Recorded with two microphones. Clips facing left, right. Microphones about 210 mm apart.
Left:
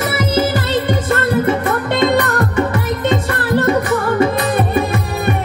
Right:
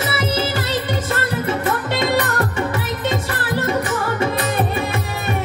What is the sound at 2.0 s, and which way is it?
Music, 60° left (ahead or behind).